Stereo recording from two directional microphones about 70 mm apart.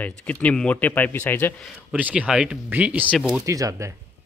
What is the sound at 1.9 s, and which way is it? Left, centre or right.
Speech, right.